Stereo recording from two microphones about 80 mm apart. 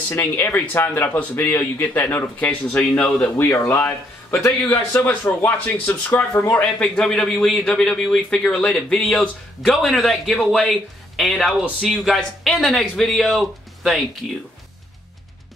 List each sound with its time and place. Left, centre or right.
0.1 s speech: left
3.3 s speech: left
3.6 s speech: centre
6.8 s speech: centre